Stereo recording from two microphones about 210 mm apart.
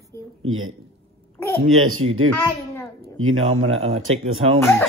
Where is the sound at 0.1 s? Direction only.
10° left (ahead or behind).